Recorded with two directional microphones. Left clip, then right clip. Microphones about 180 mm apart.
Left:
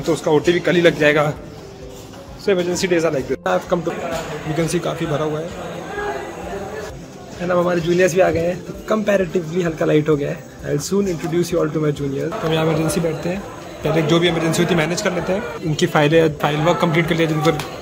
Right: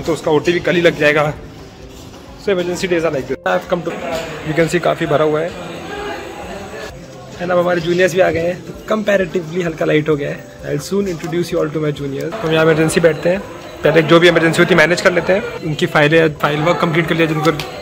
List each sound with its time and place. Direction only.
0.1 s a man's voice: 5° left (ahead or behind)
2.4 s a man's voice: 10° left (ahead or behind)
7.4 s a man's voice: centre (ahead or behind)